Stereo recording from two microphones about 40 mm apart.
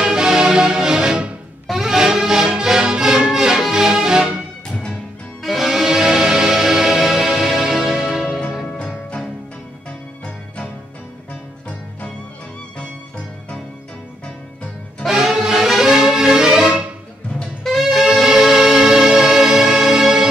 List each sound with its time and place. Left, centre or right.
0.0 s music: centre
4.6 s music: left
5.4 s music: centre
5.7 s music: centre
15.0 s music: centre
17.8 s music: centre